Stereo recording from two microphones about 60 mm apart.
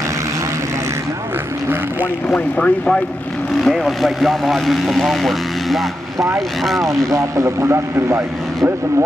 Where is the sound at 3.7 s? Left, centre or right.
Centre.